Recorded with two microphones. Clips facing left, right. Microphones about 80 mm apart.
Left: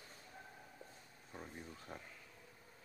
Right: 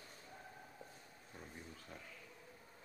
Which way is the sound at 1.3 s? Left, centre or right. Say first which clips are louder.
Left 3 dB; left.